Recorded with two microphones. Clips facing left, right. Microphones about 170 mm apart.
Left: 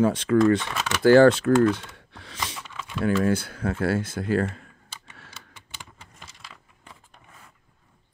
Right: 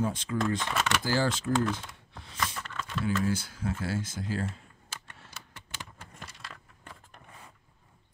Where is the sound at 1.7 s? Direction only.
75° left (ahead or behind).